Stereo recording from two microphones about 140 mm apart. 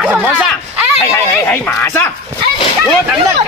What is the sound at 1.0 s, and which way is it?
Speech, 15° left (ahead or behind).